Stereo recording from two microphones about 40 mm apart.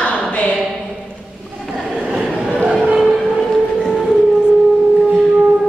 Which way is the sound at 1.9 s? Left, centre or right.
Centre.